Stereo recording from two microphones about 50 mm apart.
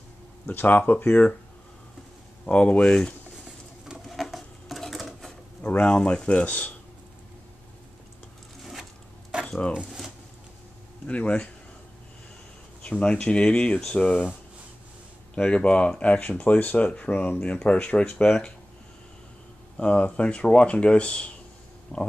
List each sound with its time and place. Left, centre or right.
0.5 s speech: left
2.4 s speech: left
4.1 s sewing machine: centre
5.6 s speech: left
9.5 s speech: left
9.8 s a sound: centre
11.1 s speech: left
12.9 s speech: left
13.7 s speech: centre
15.3 s speech: left
19.8 s speech: left